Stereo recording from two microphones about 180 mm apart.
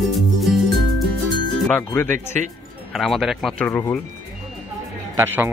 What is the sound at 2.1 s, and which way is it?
Speech, 45° right (ahead or behind).